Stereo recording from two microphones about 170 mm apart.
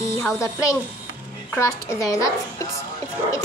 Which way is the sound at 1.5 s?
15° left (ahead or behind).